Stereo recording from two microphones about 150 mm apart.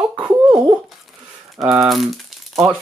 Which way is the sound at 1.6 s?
Centre (ahead or behind).